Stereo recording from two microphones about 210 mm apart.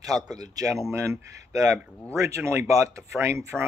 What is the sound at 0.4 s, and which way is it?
Speech, 15° right (ahead or behind).